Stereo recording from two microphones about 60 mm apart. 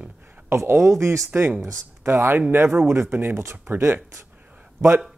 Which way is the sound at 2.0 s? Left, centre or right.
Right.